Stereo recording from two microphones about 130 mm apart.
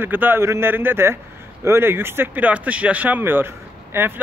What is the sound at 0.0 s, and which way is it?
A man's voice, 15° right (ahead or behind).